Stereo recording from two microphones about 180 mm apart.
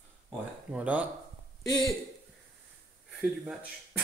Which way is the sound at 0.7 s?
10° right (ahead or behind).